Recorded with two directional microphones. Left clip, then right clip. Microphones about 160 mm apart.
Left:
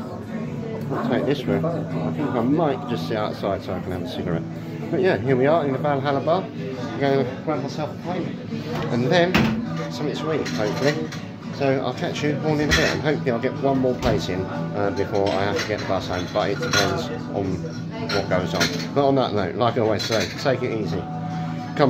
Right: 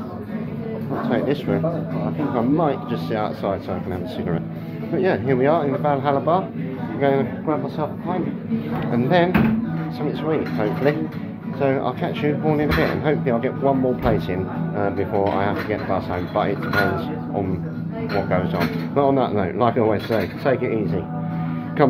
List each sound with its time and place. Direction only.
1.1 s speech: 15° left (ahead or behind)
4.9 s a man's voice: 20° left (ahead or behind)
8.9 s speech: 10° left (ahead or behind)
11.6 s speech: 10° left (ahead or behind)
18.3 s speech: 15° left (ahead or behind)